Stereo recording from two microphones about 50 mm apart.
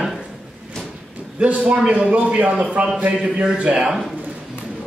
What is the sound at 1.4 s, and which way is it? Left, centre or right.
Speech, right.